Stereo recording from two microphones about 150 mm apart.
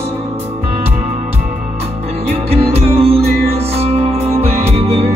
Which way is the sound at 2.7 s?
40° right (ahead or behind).